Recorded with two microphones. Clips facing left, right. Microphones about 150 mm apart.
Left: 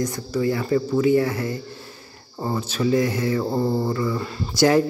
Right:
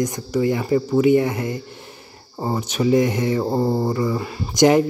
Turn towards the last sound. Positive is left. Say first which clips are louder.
# right 3 dB
turn(degrees=-20)  # may be behind; listen again after turning